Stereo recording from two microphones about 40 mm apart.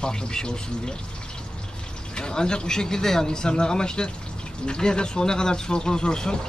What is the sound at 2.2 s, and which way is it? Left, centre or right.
Speech, centre.